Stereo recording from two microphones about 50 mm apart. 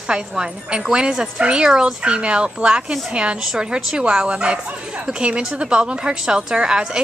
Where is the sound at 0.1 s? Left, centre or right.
Centre.